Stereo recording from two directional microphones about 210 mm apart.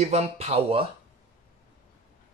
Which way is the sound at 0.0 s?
30° right (ahead or behind).